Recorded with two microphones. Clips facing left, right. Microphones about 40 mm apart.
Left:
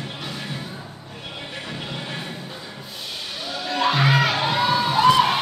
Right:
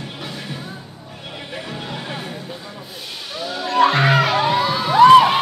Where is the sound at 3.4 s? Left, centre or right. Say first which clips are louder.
Right 6 dB; centre.